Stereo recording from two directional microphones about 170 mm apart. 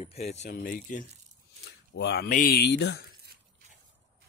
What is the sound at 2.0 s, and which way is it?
Speech, 80° left.